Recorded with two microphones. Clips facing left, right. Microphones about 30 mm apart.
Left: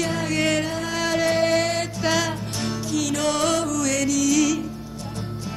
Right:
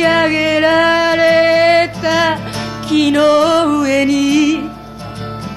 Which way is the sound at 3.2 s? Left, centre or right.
Right.